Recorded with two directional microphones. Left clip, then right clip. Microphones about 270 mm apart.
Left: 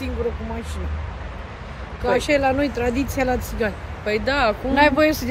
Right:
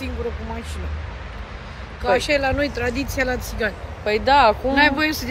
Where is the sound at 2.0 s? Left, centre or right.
Centre.